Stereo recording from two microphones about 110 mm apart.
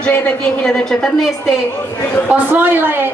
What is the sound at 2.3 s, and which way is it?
Speech, 20° right (ahead or behind).